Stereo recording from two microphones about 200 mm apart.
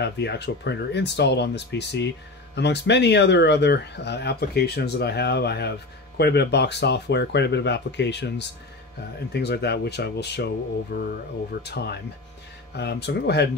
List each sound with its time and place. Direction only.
0.0 s speech: 55° left (ahead or behind)